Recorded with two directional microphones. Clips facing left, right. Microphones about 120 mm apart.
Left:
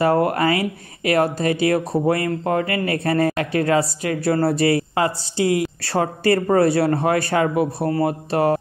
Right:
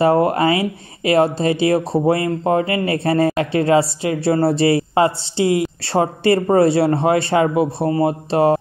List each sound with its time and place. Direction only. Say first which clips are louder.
0.0 s speech: right 3 dB; 25° right (ahead or behind)